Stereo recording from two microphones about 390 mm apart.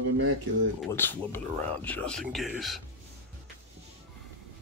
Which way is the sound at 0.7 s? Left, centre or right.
Centre.